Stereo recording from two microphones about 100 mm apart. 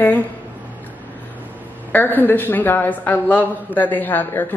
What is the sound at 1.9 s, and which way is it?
A woman's voice, 20° left (ahead or behind).